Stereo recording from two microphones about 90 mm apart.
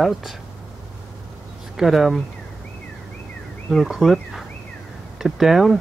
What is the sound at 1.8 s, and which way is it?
Speech, centre (ahead or behind).